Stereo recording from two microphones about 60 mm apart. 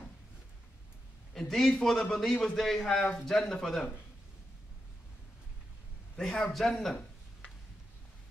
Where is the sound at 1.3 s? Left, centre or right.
Centre.